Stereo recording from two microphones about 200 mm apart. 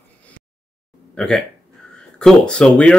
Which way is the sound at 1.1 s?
5° left (ahead or behind).